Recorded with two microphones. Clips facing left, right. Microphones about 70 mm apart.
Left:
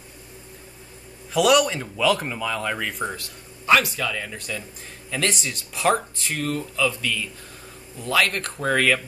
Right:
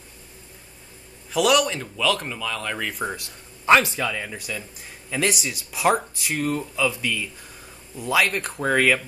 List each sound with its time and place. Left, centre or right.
1.3 s speech: centre
3.6 s a man's voice: right
4.1 s speech: centre